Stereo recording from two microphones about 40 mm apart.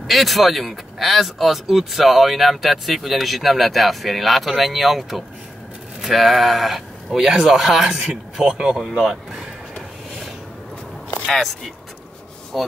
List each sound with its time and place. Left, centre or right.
0.0 s speech: centre
8.5 s speech: centre
11.1 s a sound: centre
12.5 s speech: centre